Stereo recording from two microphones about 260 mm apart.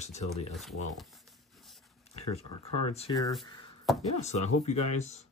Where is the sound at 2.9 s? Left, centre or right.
Centre.